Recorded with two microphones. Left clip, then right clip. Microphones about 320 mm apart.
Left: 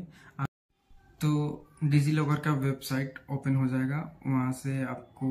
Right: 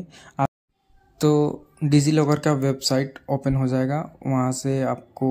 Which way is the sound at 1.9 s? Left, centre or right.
Centre.